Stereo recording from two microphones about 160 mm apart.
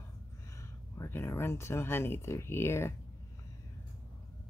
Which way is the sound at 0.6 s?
15° left (ahead or behind).